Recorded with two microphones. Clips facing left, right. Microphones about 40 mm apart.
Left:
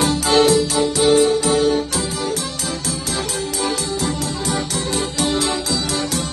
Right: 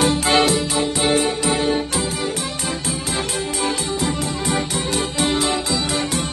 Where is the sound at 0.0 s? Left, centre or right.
Right.